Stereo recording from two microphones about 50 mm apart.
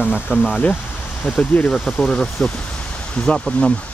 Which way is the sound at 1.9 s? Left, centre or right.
Centre.